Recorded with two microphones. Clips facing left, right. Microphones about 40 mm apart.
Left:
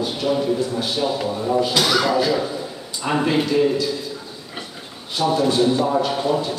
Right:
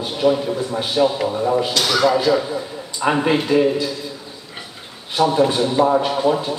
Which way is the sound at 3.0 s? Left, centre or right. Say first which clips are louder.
Right 4 dB; right.